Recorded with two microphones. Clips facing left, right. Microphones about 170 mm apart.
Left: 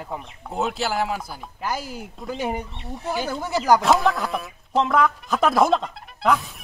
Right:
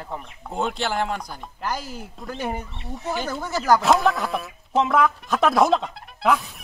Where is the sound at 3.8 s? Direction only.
Centre (ahead or behind).